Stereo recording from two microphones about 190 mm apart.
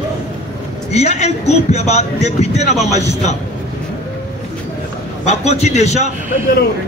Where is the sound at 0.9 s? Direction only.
35° left (ahead or behind).